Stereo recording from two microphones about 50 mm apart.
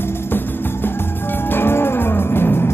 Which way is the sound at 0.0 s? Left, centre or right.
Left.